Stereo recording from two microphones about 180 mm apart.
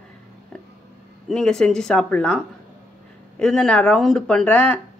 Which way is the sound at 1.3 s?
5° left (ahead or behind).